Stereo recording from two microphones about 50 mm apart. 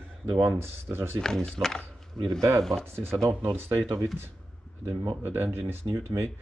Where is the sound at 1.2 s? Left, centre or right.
Centre.